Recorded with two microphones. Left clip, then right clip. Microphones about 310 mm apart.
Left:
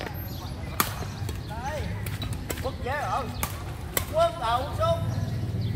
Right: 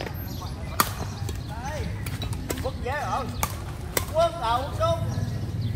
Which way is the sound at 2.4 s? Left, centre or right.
Centre.